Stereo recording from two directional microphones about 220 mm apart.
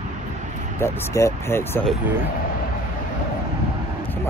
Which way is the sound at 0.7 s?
15° left (ahead or behind).